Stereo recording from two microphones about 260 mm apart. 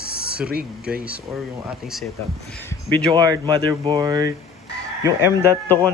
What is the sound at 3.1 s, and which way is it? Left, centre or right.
Speech, centre.